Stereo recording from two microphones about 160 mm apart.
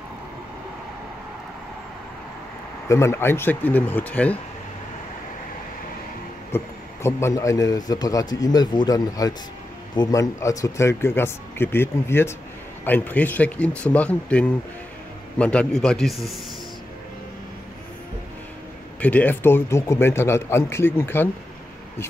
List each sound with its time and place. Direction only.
2.9 s speech: 15° left (ahead or behind)
6.5 s a man's voice: 15° left (ahead or behind); by 16.3 s centre (ahead or behind)
18.9 s speech: 10° left (ahead or behind)